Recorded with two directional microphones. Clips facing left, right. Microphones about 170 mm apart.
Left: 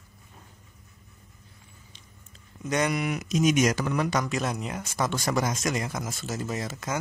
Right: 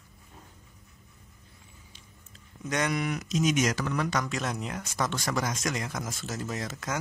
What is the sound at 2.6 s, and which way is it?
Speech, 5° left (ahead or behind).